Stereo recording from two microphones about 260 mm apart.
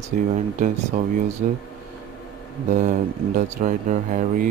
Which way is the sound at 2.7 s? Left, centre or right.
Right.